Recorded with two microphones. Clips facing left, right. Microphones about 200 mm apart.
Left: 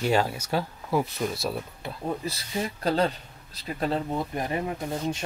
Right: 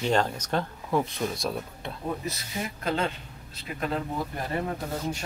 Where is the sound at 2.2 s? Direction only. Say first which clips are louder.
Left 3 dB; 35° left (ahead or behind).